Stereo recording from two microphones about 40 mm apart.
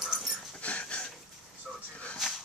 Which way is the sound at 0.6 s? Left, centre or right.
Left.